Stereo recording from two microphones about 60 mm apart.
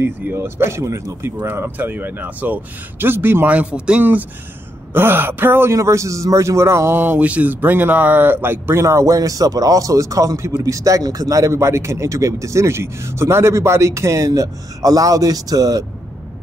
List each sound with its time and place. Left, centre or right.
0.2 s speech: right
0.7 s speech: right
1.5 s speech: right
3.4 s speech: right
4.0 s speech: right
5.8 s speech: right
7.2 s speech: right
8.8 s a man's voice: right